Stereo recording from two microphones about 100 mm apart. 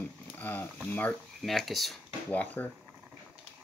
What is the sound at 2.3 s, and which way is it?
Speech, 15° left (ahead or behind).